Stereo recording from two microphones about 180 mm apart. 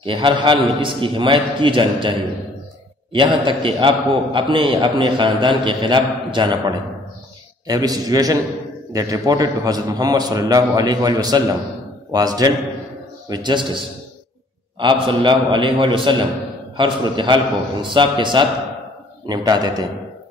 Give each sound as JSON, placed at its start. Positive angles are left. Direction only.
{"t": 0.0, "sound": "a man's voice", "side_deg": -30}